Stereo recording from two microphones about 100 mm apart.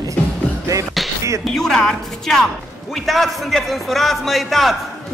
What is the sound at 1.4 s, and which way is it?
A man's voice, 5° left (ahead or behind).